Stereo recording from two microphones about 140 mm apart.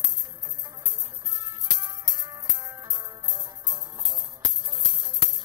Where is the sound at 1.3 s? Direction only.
30° right (ahead or behind).